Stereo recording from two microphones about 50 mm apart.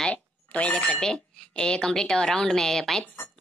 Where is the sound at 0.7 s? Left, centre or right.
Centre.